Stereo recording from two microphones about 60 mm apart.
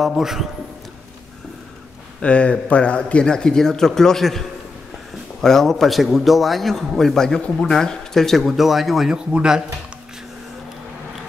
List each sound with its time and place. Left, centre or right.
0.0 s a man's voice: centre
2.2 s a man's voice: centre
7.4 s a man's voice: left
7.7 s a man's voice: centre
9.1 s speech: centre